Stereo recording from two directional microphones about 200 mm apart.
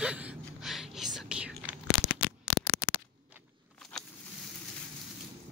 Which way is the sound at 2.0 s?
55° left (ahead or behind).